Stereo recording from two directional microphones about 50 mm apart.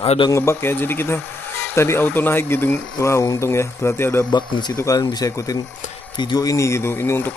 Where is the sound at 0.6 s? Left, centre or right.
Left.